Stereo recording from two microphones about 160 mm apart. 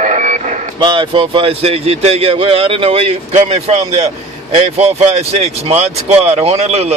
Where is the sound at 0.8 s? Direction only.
30° right (ahead or behind).